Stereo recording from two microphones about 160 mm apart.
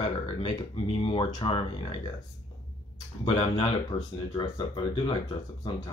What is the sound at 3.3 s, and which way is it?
Speech, 40° left (ahead or behind).